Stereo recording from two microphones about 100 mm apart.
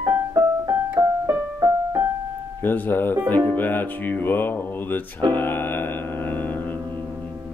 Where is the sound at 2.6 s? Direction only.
20° left (ahead or behind).